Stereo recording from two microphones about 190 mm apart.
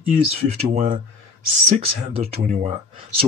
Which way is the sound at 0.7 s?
40° right (ahead or behind).